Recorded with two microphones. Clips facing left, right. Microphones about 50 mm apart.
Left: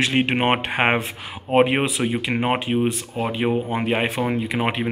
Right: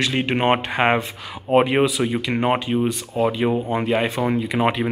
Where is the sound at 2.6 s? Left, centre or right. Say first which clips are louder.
Even; left.